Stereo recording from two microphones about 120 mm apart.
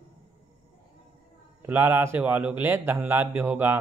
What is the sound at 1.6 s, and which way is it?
A man's voice, 15° right (ahead or behind).